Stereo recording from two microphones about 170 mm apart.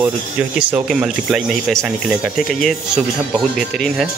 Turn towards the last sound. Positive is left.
turn(degrees=0)  # may be behind; listen again after turning